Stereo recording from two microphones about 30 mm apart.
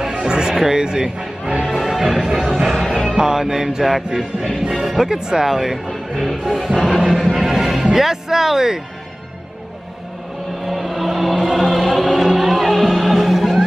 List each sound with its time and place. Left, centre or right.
0.1 s music: right
1.4 s music: right
1.7 s music: centre
2.4 s music: centre
3.3 s music: centre
3.8 s speech: centre
5.9 s music: centre
6.4 s speech: centre
7.3 s music: centre
7.9 s speech: centre
10.6 s a sound: centre
11.5 s choir: centre
12.4 s music: centre